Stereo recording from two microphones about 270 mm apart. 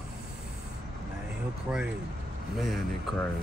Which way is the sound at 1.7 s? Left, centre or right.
Centre.